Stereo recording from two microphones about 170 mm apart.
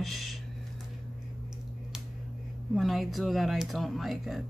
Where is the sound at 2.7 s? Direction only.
Centre (ahead or behind).